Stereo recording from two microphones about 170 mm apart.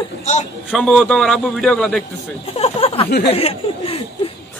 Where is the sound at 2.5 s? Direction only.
35° left (ahead or behind).